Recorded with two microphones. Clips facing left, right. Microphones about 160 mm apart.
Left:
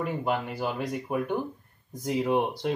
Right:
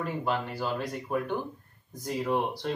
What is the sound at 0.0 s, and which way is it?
Speech, 15° left (ahead or behind).